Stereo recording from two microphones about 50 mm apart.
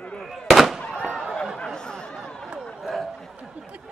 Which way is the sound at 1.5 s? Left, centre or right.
Centre.